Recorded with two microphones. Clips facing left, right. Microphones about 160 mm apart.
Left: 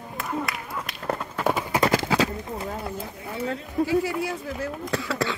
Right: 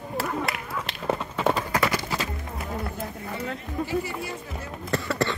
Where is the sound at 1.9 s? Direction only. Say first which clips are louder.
Left 7 dB; 90° left.